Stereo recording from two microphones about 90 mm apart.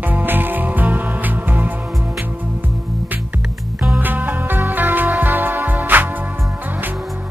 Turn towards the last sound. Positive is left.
turn(degrees=-20)  # may be behind; listen again after turning